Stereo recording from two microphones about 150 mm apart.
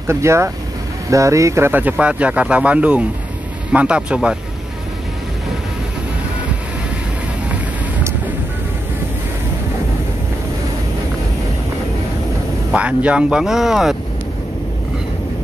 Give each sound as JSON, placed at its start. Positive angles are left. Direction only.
{"t": 0.0, "sound": "speech", "side_deg": -15}
{"t": 12.7, "sound": "speech", "side_deg": -10}